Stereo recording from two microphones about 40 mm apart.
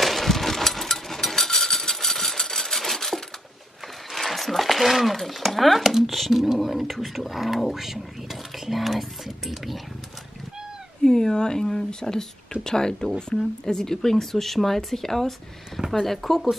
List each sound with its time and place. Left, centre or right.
0.0 s a sound: centre
4.1 s speech: centre
11.1 s speech: centre